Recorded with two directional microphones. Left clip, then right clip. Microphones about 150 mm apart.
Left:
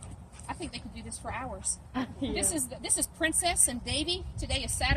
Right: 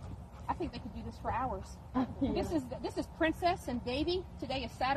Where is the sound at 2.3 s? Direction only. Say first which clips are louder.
Left 2 dB; 40° left (ahead or behind).